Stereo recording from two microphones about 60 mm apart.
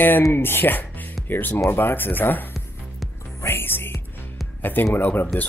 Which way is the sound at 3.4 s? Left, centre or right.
Left.